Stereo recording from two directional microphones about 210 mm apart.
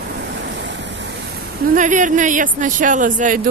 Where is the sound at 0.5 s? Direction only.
55° right (ahead or behind).